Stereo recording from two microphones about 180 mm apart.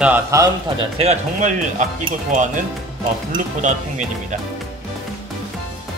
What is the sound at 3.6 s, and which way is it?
Speech, 40° right (ahead or behind).